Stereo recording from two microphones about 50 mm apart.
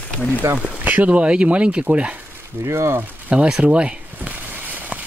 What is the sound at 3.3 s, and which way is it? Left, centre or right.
Speech, right.